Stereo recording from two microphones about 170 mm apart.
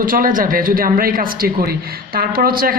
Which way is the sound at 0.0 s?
55° right (ahead or behind).